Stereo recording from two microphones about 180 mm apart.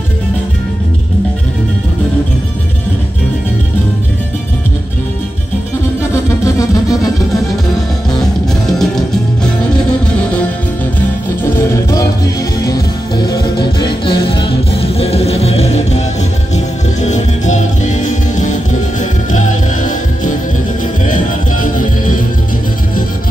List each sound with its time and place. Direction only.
6.4 s music: 20° left (ahead or behind)
11.7 s music: 15° left (ahead or behind)
13.3 s music: 25° left (ahead or behind); by 22.2 s 45° left (ahead or behind)